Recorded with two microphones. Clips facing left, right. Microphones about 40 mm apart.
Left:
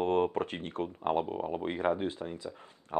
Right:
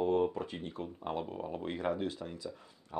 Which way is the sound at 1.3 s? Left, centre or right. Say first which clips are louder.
Left 5 dB; left.